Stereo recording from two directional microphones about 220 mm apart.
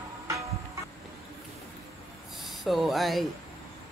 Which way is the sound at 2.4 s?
Centre (ahead or behind).